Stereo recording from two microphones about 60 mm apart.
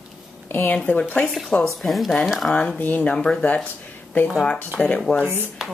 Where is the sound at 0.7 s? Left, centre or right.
Centre.